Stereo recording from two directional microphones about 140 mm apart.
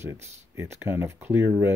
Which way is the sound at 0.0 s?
20° right (ahead or behind).